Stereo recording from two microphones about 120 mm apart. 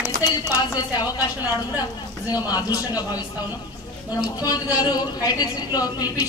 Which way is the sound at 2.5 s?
30° left (ahead or behind).